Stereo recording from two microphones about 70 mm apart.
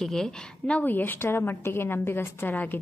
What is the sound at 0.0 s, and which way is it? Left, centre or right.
Speech, centre.